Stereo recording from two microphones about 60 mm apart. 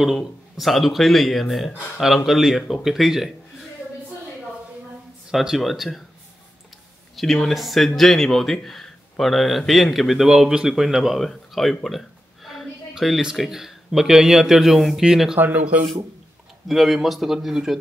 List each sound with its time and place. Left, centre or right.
0.0 s speech: centre
5.3 s speech: centre
7.2 s speech: centre
15.3 s speech: right
16.6 s speech: centre